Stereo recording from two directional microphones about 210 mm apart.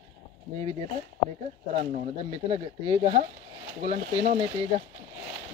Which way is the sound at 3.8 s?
35° right (ahead or behind).